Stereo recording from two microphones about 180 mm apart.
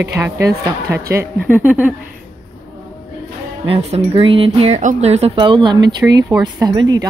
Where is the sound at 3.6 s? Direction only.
30° right (ahead or behind).